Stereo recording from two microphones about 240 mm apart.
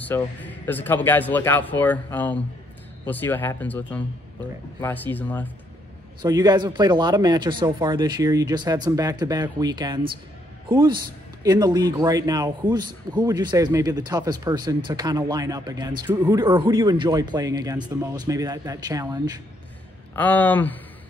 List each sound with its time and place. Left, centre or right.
0.0 s speech: centre
6.2 s a man's voice: centre
20.2 s speech: centre